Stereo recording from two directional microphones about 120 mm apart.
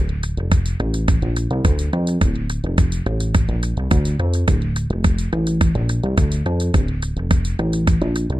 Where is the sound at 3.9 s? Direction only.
45° right (ahead or behind).